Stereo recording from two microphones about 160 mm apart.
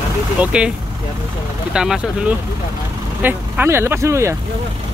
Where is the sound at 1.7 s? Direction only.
5° right (ahead or behind).